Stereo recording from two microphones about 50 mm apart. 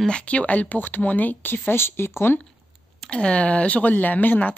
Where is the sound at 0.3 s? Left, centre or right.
Left.